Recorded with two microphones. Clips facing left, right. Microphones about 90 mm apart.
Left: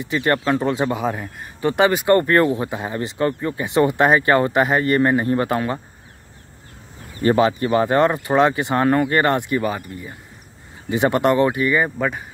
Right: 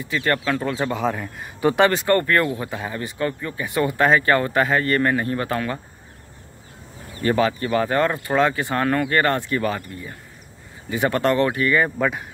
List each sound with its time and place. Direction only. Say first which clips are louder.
0.0 s speech: left 3 dB; 20° left (ahead or behind)
2.1 s speech: left 4 dB; 25° left (ahead or behind)
7.2 s speech: left 3 dB; 25° left (ahead or behind)